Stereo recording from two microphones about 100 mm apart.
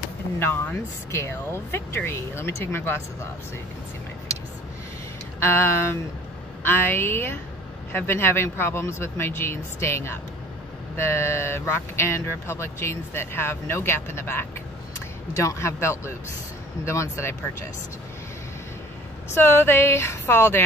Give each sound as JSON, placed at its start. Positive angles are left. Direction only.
{"t": 0.4, "sound": "speech", "side_deg": 20}
{"t": 4.3, "sound": "a sound", "side_deg": -90}
{"t": 5.4, "sound": "speech", "side_deg": 25}
{"t": 19.3, "sound": "speech", "side_deg": 25}